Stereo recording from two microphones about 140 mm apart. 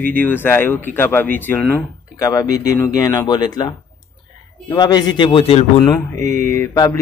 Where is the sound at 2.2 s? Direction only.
25° left (ahead or behind); by 5.6 s 40° left (ahead or behind).